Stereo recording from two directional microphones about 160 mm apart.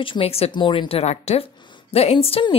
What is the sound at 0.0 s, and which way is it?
Speech, 35° left (ahead or behind).